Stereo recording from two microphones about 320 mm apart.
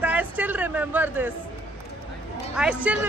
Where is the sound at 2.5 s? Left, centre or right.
Centre.